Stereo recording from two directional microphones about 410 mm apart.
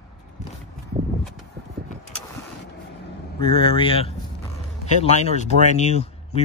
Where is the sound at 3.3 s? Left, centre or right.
Centre.